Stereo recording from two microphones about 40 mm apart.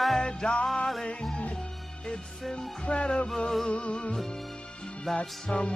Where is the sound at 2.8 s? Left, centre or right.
Left.